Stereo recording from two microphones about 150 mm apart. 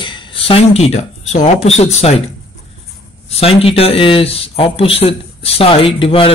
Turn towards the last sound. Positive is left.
turn(degrees=35)  # may be behind; listen again after turning